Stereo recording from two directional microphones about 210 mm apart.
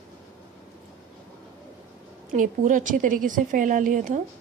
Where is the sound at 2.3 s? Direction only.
40° right (ahead or behind).